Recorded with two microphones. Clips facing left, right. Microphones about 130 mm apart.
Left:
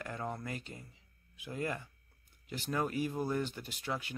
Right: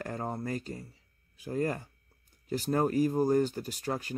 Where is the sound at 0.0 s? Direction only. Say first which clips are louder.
Right 5 dB; 40° right (ahead or behind).